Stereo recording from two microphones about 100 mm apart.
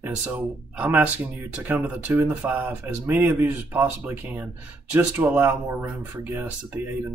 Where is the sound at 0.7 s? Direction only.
15° right (ahead or behind).